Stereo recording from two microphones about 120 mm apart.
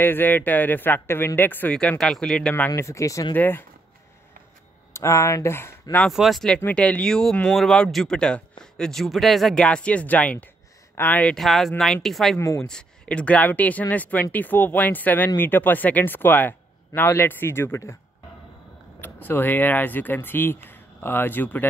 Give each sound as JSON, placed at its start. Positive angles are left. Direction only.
{"t": 0.0, "sound": "speech", "side_deg": 15}
{"t": 2.7, "sound": "speech", "side_deg": 25}
{"t": 4.9, "sound": "speech", "side_deg": 25}
{"t": 6.1, "sound": "speech", "side_deg": 0}
{"t": 12.4, "sound": "speech", "side_deg": 25}
{"t": 12.6, "sound": "speech", "side_deg": 5}
{"t": 18.9, "sound": "speech", "side_deg": 15}